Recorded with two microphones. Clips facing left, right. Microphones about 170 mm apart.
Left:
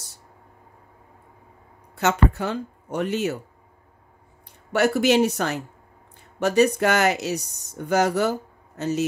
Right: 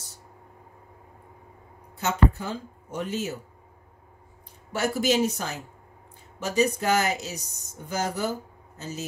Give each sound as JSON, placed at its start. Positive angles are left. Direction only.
{"t": 2.0, "sound": "speech", "side_deg": 70}
{"t": 4.7, "sound": "speech", "side_deg": 70}